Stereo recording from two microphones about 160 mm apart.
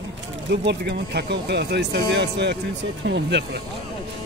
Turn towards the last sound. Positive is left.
turn(degrees=-90)